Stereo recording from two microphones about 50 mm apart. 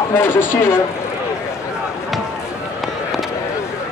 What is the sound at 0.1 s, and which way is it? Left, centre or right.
Speech, left.